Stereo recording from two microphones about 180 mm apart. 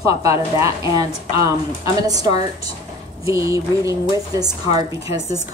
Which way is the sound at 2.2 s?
20° right (ahead or behind).